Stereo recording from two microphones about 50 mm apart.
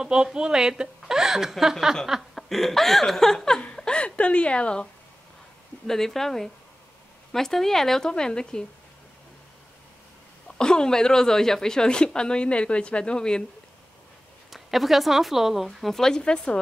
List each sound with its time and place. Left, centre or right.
0.0 s a woman's voice: centre
3.6 s a sound: centre
5.9 s a woman's voice: centre
10.6 s a woman's voice: centre
14.5 s speech: centre